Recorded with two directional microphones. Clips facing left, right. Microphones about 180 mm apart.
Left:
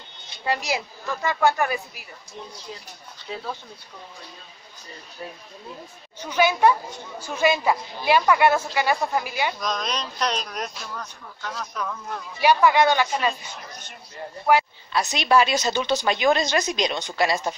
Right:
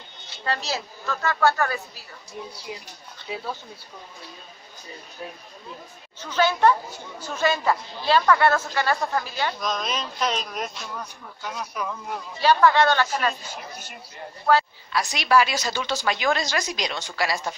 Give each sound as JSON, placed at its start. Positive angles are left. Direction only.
{"t": 0.3, "sound": "speech", "side_deg": 15}
{"t": 3.3, "sound": "speech", "side_deg": -10}
{"t": 6.2, "sound": "speech", "side_deg": 15}
{"t": 9.6, "sound": "speech", "side_deg": 0}
{"t": 12.4, "sound": "speech", "side_deg": 15}
{"t": 13.3, "sound": "speech", "side_deg": -5}
{"t": 14.4, "sound": "a woman's voice", "side_deg": 15}